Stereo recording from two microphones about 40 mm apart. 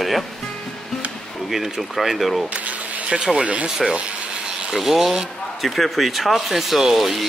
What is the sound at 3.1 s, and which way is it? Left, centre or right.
Speech, right.